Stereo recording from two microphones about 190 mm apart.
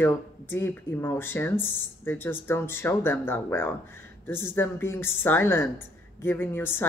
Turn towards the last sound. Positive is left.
turn(degrees=10)  # may be behind; listen again after turning